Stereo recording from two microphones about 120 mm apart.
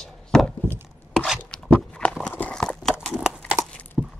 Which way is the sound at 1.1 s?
Centre (ahead or behind).